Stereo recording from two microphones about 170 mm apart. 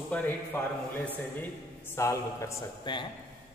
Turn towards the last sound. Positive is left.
turn(degrees=20)  # may be behind; listen again after turning